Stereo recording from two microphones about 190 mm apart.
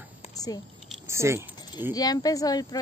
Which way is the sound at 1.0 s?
15° right (ahead or behind).